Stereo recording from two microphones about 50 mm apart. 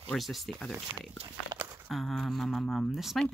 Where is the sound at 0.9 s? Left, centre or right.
Right.